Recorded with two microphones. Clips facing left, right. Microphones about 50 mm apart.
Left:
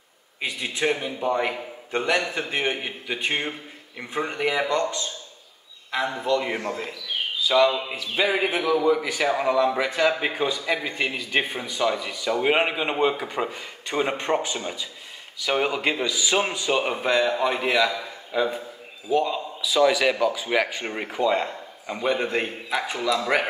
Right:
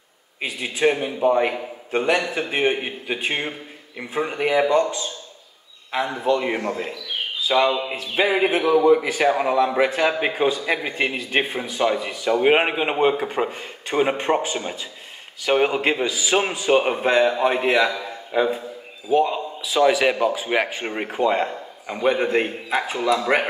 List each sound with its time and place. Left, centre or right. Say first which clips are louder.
0.4 s a man's voice: right 4 dB; right
9.4 s a man's voice: right 3 dB; right
13.9 s speech: right 4 dB; right
19.6 s speech: right 2 dB; right